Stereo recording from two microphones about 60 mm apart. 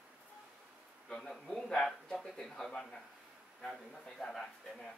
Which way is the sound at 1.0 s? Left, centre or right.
Centre.